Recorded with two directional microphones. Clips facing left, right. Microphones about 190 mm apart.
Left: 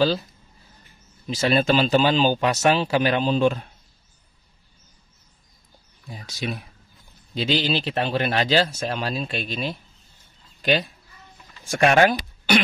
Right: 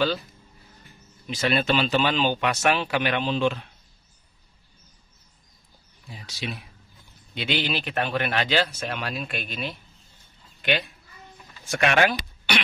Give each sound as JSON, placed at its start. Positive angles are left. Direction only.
{"t": 1.2, "sound": "speech", "side_deg": 35}
{"t": 6.0, "sound": "speech", "side_deg": 45}
{"t": 7.3, "sound": "speech", "side_deg": 35}